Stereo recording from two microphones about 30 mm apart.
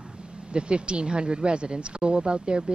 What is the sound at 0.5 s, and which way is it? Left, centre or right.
Speech, right.